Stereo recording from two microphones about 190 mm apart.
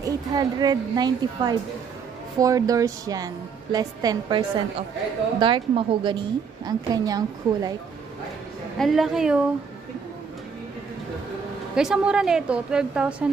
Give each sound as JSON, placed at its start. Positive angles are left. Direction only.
{"t": 0.0, "sound": "a woman's voice", "side_deg": -20}
{"t": 8.7, "sound": "a woman's voice", "side_deg": 0}
{"t": 11.7, "sound": "a woman's voice", "side_deg": -5}